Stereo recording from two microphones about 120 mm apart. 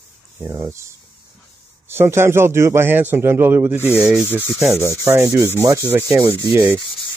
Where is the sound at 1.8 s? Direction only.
20° right (ahead or behind).